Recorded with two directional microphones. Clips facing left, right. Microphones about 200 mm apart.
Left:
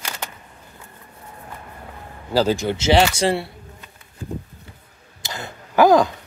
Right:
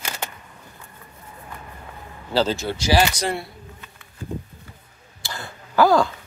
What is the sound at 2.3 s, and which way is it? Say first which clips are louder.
Speech: left 3 dB; 15° left (ahead or behind).